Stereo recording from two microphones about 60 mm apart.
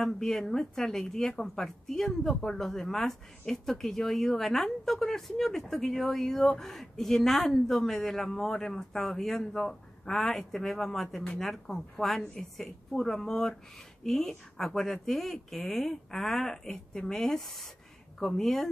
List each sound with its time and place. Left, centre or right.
0.0 s a woman's voice: centre